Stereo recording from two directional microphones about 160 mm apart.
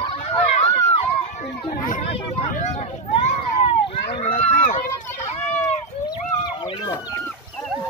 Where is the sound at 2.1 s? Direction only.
40° left (ahead or behind).